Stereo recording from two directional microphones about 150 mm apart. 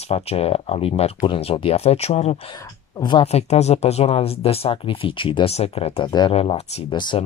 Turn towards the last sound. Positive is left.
turn(degrees=30)  # may be behind; listen again after turning